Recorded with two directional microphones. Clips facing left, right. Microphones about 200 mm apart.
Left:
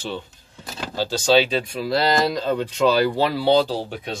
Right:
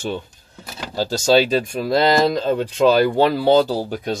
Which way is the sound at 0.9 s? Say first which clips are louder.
Right 2 dB; 45° right (ahead or behind).